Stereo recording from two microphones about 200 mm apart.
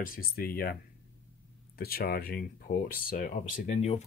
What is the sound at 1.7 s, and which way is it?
Speech, 50° left (ahead or behind).